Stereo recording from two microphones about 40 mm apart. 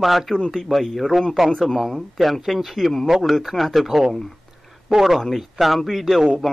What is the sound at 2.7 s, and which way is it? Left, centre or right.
Speech, centre.